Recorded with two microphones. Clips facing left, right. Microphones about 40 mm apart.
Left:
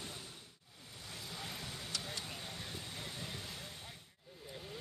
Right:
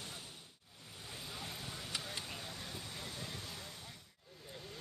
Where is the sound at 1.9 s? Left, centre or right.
Right.